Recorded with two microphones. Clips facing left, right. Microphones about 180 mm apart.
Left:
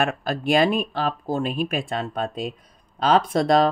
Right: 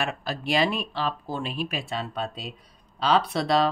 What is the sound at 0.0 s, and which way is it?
Speech, 50° left (ahead or behind).